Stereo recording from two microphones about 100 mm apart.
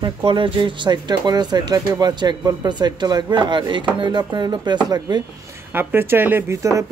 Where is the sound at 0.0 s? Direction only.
55° right (ahead or behind).